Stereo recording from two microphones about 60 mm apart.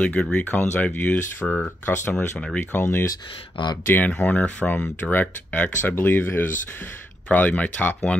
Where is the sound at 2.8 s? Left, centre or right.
Left.